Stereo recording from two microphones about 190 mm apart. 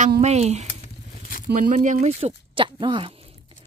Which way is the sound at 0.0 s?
40° right (ahead or behind).